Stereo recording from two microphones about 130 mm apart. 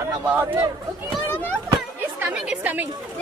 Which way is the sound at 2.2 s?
10° right (ahead or behind).